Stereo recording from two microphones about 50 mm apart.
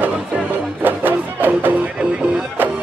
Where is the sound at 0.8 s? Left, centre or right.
Right.